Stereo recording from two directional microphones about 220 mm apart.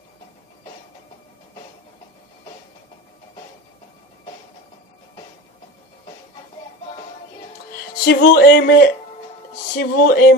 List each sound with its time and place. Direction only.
8.0 s speech: 45° left (ahead or behind)